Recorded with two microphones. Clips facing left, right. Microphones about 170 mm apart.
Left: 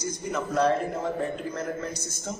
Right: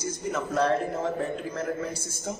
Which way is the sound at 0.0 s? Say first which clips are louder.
Even; 5° right (ahead or behind).